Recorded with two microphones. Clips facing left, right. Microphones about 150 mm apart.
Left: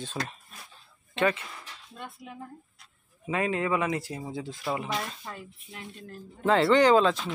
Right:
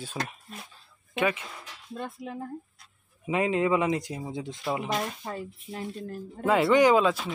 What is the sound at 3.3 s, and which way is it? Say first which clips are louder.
Speech: right 3 dB; 20° right (ahead or behind).